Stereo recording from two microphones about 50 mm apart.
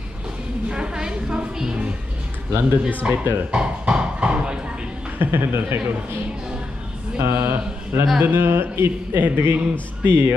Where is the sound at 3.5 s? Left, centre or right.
Centre.